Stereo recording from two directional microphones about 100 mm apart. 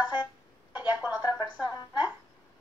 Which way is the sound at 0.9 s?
15° right (ahead or behind).